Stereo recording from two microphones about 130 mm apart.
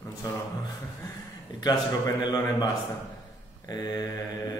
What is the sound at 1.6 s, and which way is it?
Mantra, 35° left (ahead or behind).